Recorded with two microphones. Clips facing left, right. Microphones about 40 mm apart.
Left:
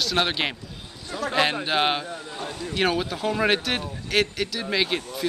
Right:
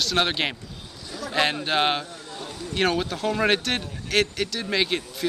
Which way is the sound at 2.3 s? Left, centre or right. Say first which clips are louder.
Left 1 dB; left.